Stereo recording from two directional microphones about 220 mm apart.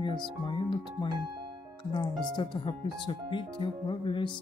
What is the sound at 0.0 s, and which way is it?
Speech, 20° left (ahead or behind).